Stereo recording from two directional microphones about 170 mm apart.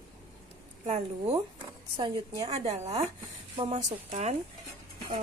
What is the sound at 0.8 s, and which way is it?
Speech, 40° right (ahead or behind).